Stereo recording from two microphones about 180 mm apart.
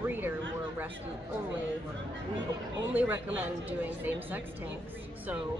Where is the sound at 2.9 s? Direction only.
10° right (ahead or behind).